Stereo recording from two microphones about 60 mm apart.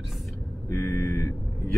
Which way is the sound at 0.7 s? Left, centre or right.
Left.